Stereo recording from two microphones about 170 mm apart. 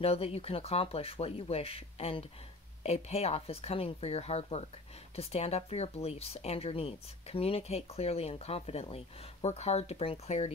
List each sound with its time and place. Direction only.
0.0 s speech: 35° left (ahead or behind)